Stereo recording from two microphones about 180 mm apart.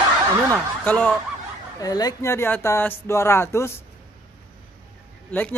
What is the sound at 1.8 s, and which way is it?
Speech, 20° left (ahead or behind).